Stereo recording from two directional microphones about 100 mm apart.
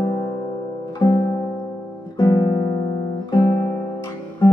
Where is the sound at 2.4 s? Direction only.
40° left (ahead or behind).